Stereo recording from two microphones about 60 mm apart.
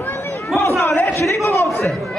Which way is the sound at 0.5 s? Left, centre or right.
Left.